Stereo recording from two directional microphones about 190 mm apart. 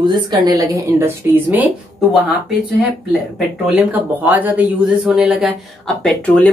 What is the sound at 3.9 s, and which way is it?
Speech, 10° right (ahead or behind).